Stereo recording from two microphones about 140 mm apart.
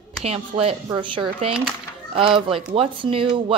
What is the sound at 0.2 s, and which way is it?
Speech, 45° right (ahead or behind).